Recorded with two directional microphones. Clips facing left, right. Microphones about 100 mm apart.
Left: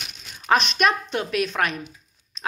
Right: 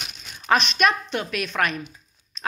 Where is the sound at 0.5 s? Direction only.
30° left (ahead or behind).